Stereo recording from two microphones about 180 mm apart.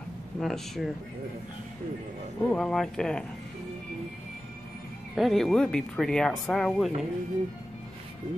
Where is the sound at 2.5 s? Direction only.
Centre (ahead or behind).